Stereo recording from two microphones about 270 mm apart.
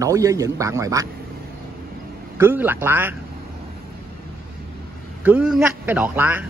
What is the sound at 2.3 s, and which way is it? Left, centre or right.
Speech, centre.